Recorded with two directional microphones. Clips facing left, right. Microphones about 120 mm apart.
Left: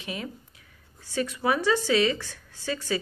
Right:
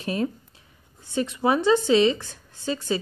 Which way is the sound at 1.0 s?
25° right (ahead or behind).